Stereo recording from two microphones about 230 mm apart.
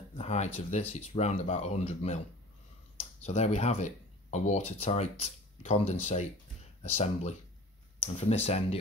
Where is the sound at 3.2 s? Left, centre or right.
Left.